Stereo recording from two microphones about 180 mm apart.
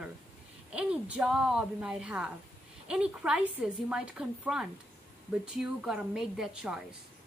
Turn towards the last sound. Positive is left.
turn(degrees=-5)  # may be behind; listen again after turning